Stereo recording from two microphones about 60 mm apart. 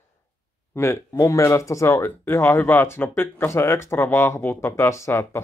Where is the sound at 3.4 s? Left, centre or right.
Left.